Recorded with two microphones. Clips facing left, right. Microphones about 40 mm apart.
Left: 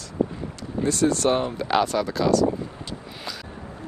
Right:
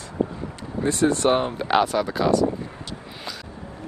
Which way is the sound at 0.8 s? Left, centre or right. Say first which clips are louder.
Right 1 dB; right.